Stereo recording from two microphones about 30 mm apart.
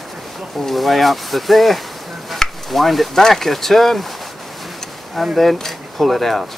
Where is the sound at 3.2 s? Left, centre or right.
Centre.